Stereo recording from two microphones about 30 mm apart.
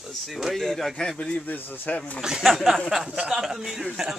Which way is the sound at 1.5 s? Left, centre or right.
Left.